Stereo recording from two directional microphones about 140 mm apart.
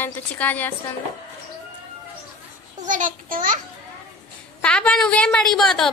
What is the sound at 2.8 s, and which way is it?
Speech, 70° right (ahead or behind).